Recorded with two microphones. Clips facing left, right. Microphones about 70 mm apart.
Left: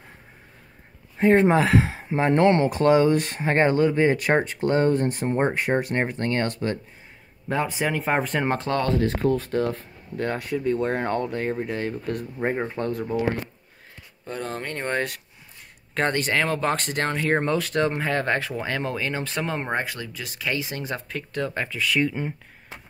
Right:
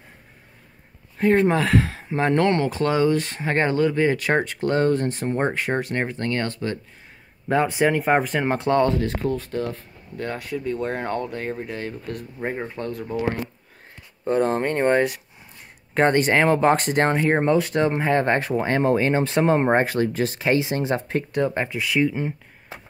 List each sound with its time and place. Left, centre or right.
1.1 s speech: left
5.2 s speech: centre
5.8 s speech: left
7.4 s speech: centre
9.3 s speech: left
10.2 s speech: centre
14.2 s speech: right
15.0 s speech: centre
15.9 s speech: right
21.3 s speech: right
22.0 s speech: centre